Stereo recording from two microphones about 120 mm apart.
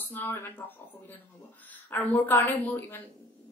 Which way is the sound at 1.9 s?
15° left (ahead or behind).